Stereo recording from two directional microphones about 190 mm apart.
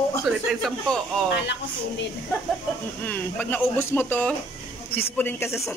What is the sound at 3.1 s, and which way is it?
Speech, 10° left (ahead or behind).